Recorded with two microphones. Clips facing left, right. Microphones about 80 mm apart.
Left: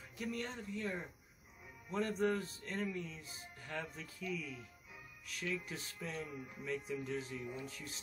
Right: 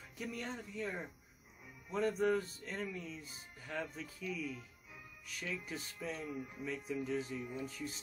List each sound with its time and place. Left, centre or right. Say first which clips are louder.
0.2 s music: left 1 dB; centre